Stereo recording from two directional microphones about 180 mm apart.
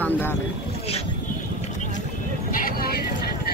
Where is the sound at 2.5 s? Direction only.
55° left (ahead or behind).